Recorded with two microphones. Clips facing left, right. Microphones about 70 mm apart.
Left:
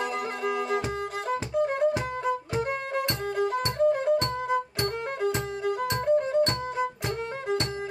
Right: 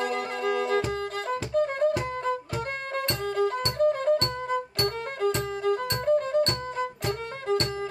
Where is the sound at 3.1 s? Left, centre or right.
Centre.